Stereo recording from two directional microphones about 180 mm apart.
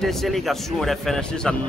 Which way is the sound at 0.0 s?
Centre (ahead or behind).